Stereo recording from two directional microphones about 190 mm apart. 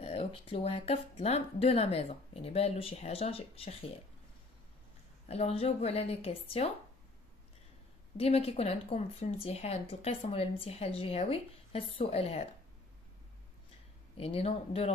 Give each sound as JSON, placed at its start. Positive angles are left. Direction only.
{"t": 0.0, "sound": "speech", "side_deg": 30}
{"t": 5.3, "sound": "speech", "side_deg": 30}
{"t": 8.2, "sound": "speech", "side_deg": 30}
{"t": 14.1, "sound": "speech", "side_deg": 30}